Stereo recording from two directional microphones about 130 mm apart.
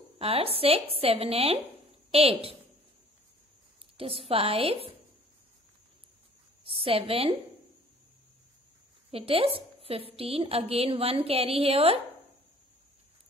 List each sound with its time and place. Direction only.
0.2 s a woman's voice: 50° right (ahead or behind)
3.9 s a woman's voice: 45° right (ahead or behind)
6.6 s a woman's voice: 45° right (ahead or behind)
9.1 s a woman's voice: 45° right (ahead or behind)